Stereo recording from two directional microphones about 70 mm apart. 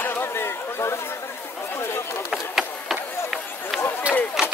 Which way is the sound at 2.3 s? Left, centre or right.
Centre.